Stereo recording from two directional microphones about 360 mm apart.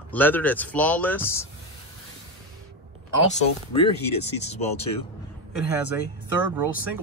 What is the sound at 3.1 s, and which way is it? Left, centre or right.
Speech, centre.